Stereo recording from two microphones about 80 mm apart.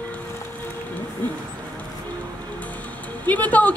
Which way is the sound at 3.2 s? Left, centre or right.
Centre.